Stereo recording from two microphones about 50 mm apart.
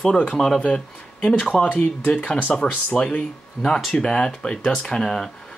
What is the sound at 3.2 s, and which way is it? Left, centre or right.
Speech, centre.